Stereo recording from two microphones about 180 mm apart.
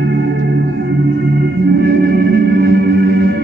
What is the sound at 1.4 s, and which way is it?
Organ, 70° right (ahead or behind).